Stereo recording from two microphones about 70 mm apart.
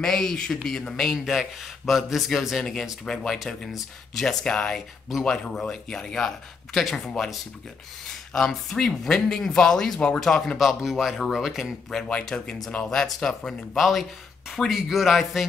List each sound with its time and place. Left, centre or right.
0.0 s speech: centre
11.9 s speech: centre